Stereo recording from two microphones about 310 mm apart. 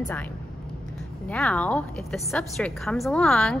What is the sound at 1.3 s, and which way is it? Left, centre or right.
A woman's voice, centre.